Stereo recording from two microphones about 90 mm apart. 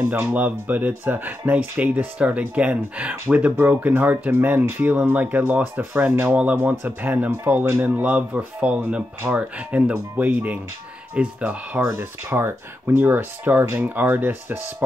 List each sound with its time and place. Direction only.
0.0 s speech: 30° right (ahead or behind)
0.3 s speech: 20° right (ahead or behind)
11.8 s speech: 30° right (ahead or behind)